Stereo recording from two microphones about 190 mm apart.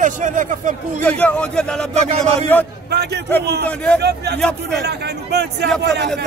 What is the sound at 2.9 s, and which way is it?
Speech, 60° right (ahead or behind).